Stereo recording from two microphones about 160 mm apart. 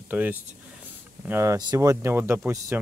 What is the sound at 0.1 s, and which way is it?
Speech, 10° right (ahead or behind).